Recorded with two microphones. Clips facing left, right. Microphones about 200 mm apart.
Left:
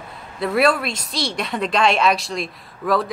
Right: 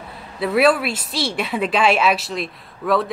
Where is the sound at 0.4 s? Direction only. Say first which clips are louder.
Right 2 dB; centre (ahead or behind).